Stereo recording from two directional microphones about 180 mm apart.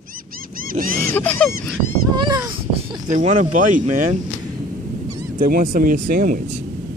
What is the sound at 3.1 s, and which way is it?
Speech, 45° right (ahead or behind).